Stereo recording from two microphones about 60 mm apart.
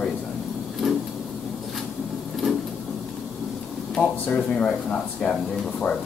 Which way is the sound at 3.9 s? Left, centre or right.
Centre.